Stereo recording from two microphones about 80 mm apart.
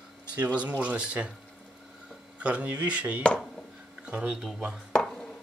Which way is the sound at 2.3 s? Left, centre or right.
Centre.